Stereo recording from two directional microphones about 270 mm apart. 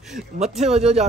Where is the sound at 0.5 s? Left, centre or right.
Right.